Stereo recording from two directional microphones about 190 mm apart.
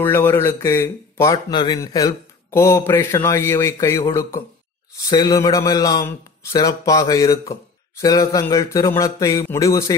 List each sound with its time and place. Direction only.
0.0 s a man's voice: 10° left (ahead or behind)